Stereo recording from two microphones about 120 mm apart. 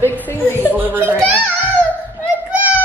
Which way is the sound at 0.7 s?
15° right (ahead or behind).